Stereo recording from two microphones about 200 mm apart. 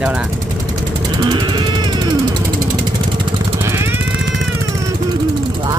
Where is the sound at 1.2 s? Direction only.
25° right (ahead or behind).